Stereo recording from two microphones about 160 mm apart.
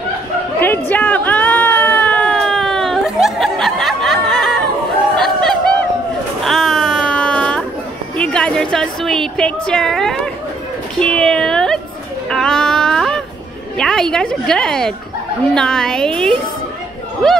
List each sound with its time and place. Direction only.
0.6 s a sound: 10° left (ahead or behind)
5.1 s chatter: 5° left (ahead or behind)
6.4 s a sound: centre (ahead or behind)
8.2 s a woman's voice: 5° left (ahead or behind)
12.3 s music: 5° left (ahead or behind)
13.7 s a woman's voice: 5° left (ahead or behind)